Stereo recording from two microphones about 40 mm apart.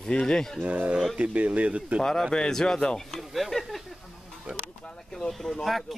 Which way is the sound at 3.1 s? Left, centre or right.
Centre.